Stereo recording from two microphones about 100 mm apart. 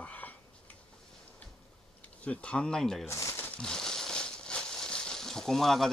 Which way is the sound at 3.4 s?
10° left (ahead or behind).